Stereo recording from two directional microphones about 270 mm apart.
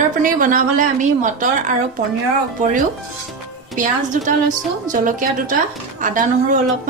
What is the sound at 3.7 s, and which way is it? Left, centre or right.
Speech, right.